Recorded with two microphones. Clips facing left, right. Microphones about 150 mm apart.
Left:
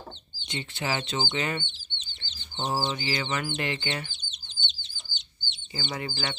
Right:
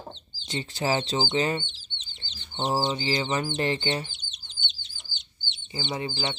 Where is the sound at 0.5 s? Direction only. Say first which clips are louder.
Right 4 dB; 35° right (ahead or behind).